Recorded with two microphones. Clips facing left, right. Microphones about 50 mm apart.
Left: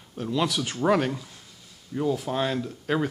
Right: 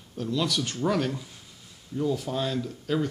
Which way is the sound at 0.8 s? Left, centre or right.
Left.